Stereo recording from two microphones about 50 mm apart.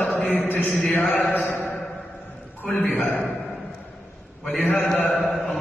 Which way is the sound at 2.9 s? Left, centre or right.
Left.